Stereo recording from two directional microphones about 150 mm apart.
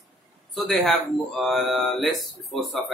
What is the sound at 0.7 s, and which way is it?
Speech, centre (ahead or behind).